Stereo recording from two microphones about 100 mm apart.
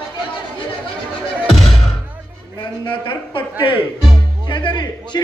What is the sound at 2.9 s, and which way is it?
Speech, 55° left (ahead or behind).